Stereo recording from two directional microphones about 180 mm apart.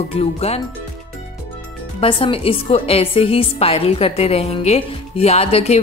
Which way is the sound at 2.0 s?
30° left (ahead or behind).